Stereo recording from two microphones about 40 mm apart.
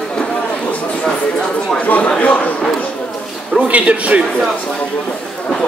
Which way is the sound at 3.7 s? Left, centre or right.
Right.